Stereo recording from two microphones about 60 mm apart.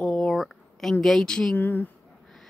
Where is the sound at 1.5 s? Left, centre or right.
Left.